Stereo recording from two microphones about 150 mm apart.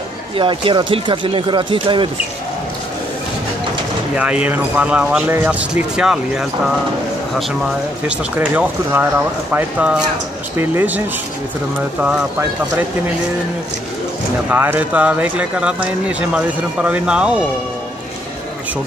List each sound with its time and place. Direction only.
0.4 s speech: 35° right (ahead or behind)
4.2 s speech: 10° right (ahead or behind)
8.4 s speech: 10° right (ahead or behind)
12.0 s speech: 10° right (ahead or behind)
14.5 s speech: 10° right (ahead or behind)